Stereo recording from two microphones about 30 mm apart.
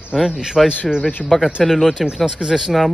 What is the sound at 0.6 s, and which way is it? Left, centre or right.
Speech, centre.